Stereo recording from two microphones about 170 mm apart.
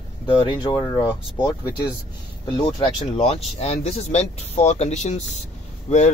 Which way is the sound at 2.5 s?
30° left (ahead or behind).